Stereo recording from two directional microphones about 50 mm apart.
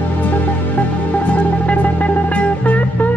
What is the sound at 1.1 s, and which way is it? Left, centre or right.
Music, left.